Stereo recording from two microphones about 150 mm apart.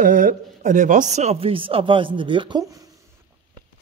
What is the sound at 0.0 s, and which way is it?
Speech, 65° right (ahead or behind).